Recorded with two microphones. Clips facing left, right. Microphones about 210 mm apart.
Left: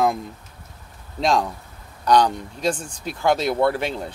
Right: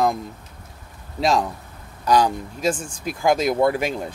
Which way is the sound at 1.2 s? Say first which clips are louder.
Even; 5° right (ahead or behind).